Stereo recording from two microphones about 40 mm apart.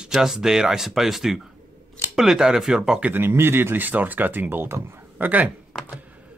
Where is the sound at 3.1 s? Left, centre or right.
Right.